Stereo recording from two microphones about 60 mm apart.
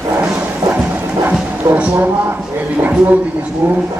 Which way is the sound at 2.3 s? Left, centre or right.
Right.